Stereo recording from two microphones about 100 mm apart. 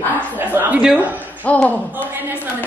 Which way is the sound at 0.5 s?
25° right (ahead or behind).